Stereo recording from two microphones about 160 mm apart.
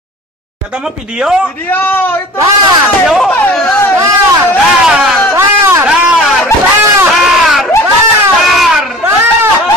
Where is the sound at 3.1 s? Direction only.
Centre (ahead or behind).